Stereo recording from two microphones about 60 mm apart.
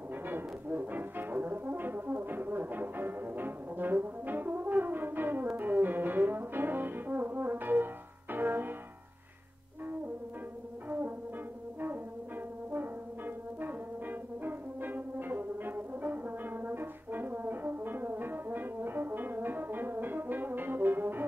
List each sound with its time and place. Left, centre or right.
0.1 s brass instrument: right
10.9 s music: right
12.7 s brass instrument: right